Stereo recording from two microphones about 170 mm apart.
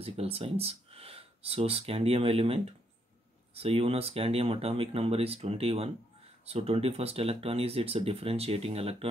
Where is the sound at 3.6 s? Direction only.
35° right (ahead or behind).